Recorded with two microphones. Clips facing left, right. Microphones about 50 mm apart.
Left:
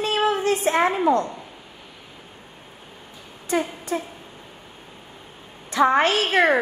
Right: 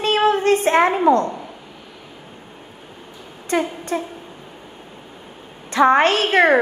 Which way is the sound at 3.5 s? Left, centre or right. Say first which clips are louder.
Right 3 dB; right.